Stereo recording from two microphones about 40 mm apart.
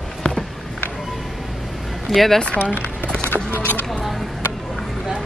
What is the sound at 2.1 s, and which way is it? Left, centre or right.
Speech, centre.